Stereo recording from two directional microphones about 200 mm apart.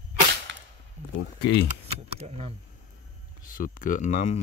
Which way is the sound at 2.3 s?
30° right (ahead or behind).